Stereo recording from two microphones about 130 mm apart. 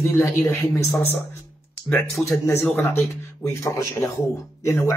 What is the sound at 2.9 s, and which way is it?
Speech, 25° left (ahead or behind).